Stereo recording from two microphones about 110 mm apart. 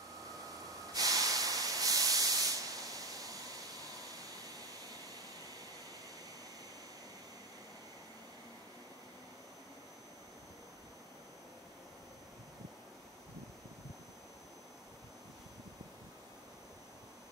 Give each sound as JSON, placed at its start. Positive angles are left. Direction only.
{"t": 0.9, "sound": "hiss", "side_deg": -35}